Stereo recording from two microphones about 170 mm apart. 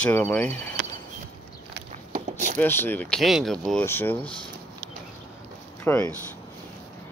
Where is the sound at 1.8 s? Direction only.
50° right (ahead or behind).